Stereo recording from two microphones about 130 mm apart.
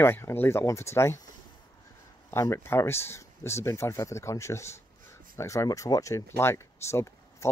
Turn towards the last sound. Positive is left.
turn(degrees=20)  # may be behind; listen again after turning